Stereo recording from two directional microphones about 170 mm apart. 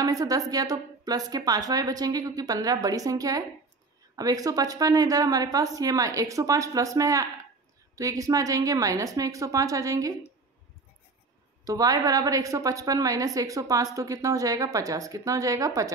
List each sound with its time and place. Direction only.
0.0 s a woman's voice: 20° right (ahead or behind)
11.6 s a woman's voice: 20° right (ahead or behind)